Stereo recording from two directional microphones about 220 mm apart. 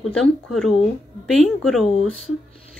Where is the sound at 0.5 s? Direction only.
Centre (ahead or behind).